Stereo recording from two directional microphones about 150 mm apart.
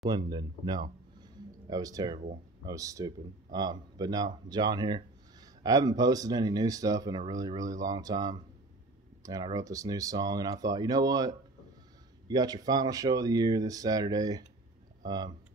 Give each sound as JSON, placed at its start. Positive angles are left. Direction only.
{"t": 0.0, "sound": "speech", "side_deg": -30}
{"t": 1.3, "sound": "a sound", "side_deg": -25}
{"t": 2.6, "sound": "speech", "side_deg": -20}